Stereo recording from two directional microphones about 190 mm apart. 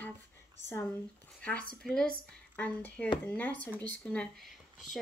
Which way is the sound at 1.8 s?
Centre (ahead or behind).